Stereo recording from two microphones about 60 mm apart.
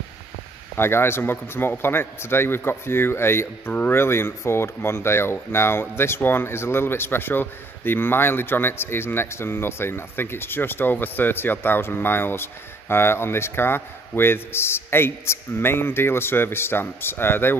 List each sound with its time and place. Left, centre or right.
0.7 s speech: left